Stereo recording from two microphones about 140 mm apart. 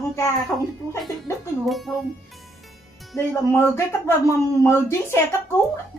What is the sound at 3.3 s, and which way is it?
Speech, 15° left (ahead or behind).